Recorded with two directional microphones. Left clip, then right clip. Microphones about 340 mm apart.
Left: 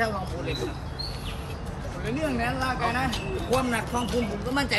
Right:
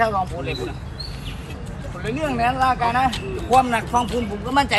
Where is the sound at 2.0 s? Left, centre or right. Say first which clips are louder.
Right 7 dB; centre.